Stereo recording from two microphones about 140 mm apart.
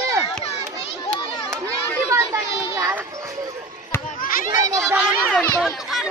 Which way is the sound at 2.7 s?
20° right (ahead or behind).